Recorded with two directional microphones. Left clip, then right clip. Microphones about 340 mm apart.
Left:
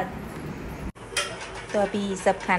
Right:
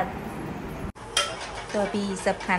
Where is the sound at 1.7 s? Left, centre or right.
Centre.